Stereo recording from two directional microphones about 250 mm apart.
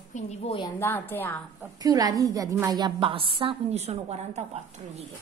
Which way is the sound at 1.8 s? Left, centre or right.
Centre.